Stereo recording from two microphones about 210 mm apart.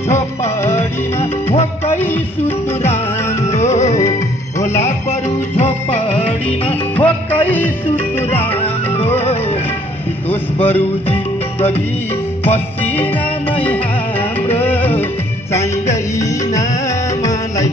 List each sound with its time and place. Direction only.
3.4 s music: 30° left (ahead or behind)
7.0 s music: 10° left (ahead or behind)
8.3 s music: 30° left (ahead or behind)
10.3 s music: 30° left (ahead or behind)
12.4 s music: 10° left (ahead or behind)
14.6 s music: 10° left (ahead or behind)